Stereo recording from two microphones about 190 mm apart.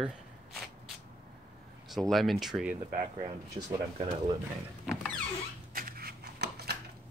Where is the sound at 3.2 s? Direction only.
20° right (ahead or behind).